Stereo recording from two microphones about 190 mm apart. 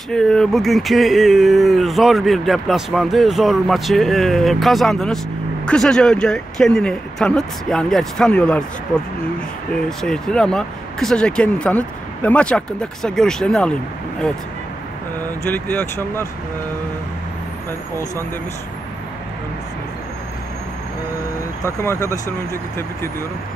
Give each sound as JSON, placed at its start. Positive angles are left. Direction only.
{"t": 0.1, "sound": "speech", "side_deg": 5}
{"t": 9.8, "sound": "speech", "side_deg": 5}
{"t": 15.5, "sound": "speech", "side_deg": 10}